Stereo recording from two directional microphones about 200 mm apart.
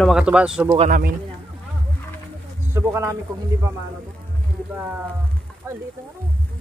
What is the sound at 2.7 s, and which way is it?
Speech, 15° right (ahead or behind).